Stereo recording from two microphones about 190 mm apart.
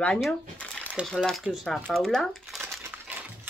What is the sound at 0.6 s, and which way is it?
Crumpling, 5° left (ahead or behind).